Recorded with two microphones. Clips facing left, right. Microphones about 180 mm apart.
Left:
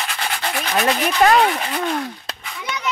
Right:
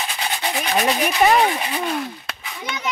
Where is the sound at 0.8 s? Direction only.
10° right (ahead or behind).